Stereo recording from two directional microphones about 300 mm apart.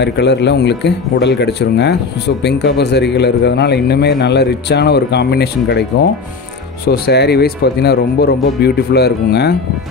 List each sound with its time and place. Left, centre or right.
0.0 s speech: left
6.9 s speech: left